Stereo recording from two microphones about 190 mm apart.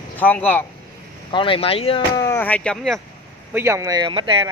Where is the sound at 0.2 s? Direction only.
10° left (ahead or behind).